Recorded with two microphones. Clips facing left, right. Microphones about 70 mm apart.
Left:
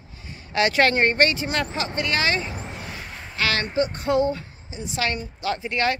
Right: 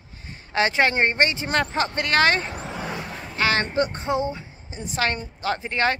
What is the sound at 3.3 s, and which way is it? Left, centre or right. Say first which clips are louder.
Speech: right 1 dB; right.